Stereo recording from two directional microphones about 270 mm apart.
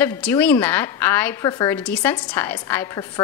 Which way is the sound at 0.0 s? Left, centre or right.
Centre.